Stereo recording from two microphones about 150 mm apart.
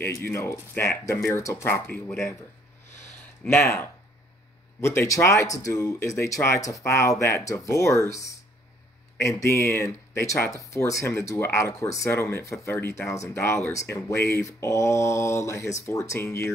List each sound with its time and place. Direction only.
0.0 s speech: 15° left (ahead or behind)
3.4 s speech: 15° left (ahead or behind)